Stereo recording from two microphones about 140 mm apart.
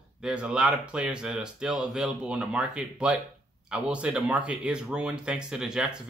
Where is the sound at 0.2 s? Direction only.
5° right (ahead or behind).